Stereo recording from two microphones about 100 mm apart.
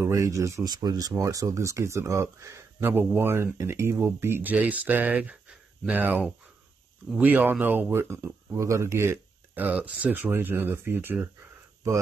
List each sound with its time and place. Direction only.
0.0 s speech: 30° right (ahead or behind)
0.7 s speech: 40° right (ahead or behind); by 9.7 s 25° right (ahead or behind)
9.7 s speech: 10° right (ahead or behind)